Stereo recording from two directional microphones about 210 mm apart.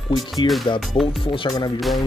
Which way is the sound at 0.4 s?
20° left (ahead or behind).